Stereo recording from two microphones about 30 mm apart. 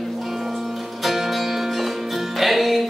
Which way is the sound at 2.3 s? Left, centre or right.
Centre.